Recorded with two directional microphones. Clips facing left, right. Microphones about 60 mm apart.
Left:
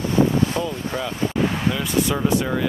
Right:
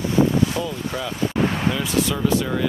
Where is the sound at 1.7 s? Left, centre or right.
Centre.